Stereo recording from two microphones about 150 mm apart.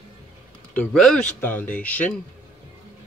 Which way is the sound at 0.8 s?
5° left (ahead or behind).